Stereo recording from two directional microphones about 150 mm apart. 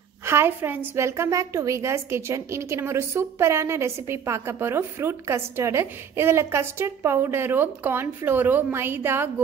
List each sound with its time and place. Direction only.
0.2 s a woman's voice: 15° right (ahead or behind)